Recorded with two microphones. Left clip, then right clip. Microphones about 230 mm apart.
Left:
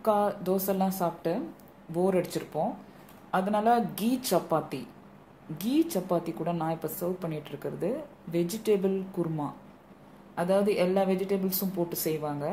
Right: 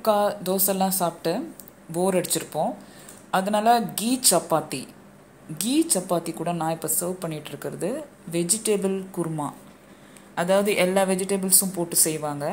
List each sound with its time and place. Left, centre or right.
0.0 s a woman's voice: centre